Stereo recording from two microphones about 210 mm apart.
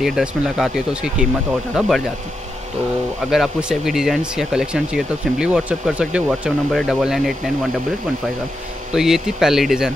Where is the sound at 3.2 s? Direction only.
Centre (ahead or behind).